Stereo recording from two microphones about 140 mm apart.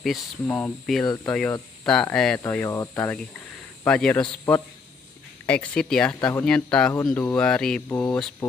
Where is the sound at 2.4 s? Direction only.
20° left (ahead or behind).